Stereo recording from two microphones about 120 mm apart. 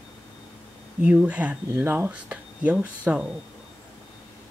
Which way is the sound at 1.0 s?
10° right (ahead or behind).